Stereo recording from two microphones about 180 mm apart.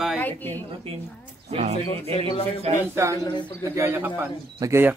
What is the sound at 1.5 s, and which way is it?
Speech, 35° right (ahead or behind).